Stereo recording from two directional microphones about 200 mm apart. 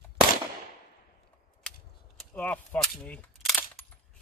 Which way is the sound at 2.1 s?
5° left (ahead or behind).